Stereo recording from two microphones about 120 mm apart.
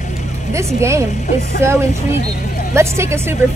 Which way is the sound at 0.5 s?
25° right (ahead or behind).